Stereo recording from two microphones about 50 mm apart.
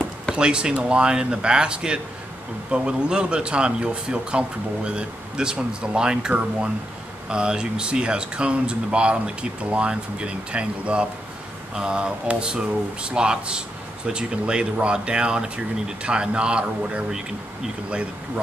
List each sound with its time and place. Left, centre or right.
0.4 s speech: centre